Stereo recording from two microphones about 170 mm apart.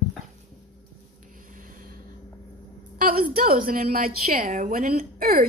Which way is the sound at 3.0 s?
60° right (ahead or behind).